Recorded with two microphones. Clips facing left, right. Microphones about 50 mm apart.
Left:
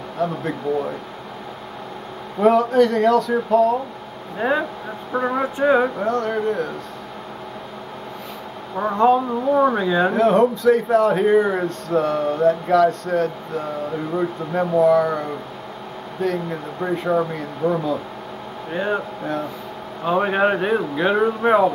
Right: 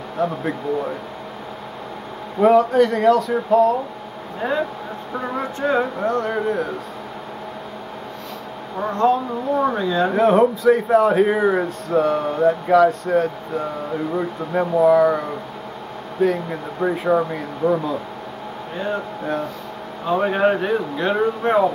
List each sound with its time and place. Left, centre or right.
0.2 s speech: centre
2.4 s speech: centre
4.4 s speech: centre
5.9 s speech: centre
8.7 s speech: centre
10.1 s speech: centre
18.7 s speech: centre
20.1 s speech: centre